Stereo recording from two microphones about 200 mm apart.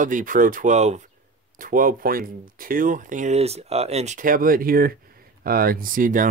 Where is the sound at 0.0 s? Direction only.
40° right (ahead or behind).